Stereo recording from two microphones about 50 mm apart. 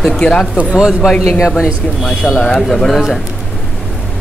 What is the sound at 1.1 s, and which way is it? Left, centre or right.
Speech, centre.